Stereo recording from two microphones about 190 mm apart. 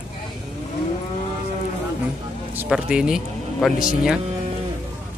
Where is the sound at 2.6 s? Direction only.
5° right (ahead or behind).